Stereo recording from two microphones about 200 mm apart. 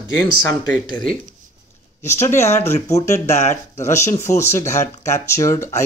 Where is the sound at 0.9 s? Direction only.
45° right (ahead or behind).